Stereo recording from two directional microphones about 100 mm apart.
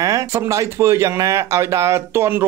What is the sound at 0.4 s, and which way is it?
Speech, 30° right (ahead or behind).